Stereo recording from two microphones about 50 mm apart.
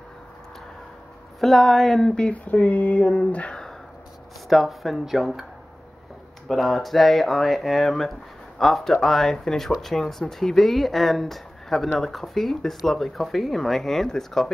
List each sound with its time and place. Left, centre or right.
1.4 s speech: centre
2.1 s speech: left
4.5 s speech: centre
6.5 s speech: centre